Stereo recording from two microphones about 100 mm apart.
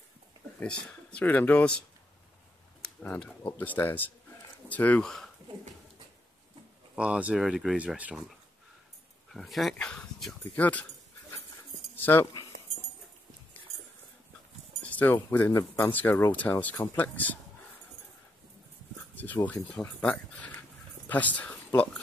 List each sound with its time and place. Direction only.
0.6 s speech: 10° left (ahead or behind)
2.8 s a sound: 10° left (ahead or behind)
3.4 s speech: 20° left (ahead or behind)
5.0 s speech: centre (ahead or behind)
7.0 s speech: 10° right (ahead or behind)
9.3 s speech: centre (ahead or behind)
12.0 s speech: 20° left (ahead or behind)
14.9 s speech: 15° left (ahead or behind)
19.1 s speech: 15° left (ahead or behind)